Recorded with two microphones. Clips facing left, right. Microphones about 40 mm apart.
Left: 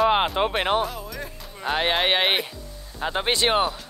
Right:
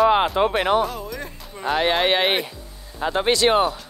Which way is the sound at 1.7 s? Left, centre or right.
Centre.